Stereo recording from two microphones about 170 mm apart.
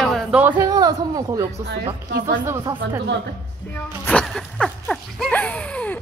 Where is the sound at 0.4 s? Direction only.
10° right (ahead or behind).